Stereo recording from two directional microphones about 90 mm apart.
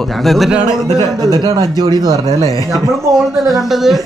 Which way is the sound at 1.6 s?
40° left (ahead or behind).